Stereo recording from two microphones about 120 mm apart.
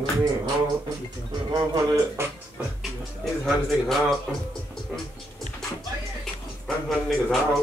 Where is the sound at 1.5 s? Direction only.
35° right (ahead or behind).